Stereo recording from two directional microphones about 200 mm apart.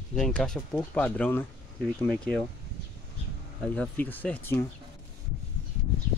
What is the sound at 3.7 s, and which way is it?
Speech, 10° left (ahead or behind).